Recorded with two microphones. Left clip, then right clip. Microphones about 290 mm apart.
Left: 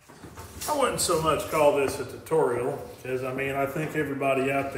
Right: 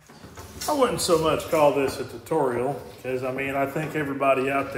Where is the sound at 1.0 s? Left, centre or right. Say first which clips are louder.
Right 3 dB; right.